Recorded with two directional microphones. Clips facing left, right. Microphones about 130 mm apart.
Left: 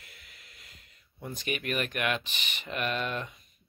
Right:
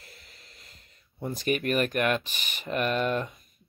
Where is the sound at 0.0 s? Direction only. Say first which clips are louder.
Right 3 dB; 35° right (ahead or behind).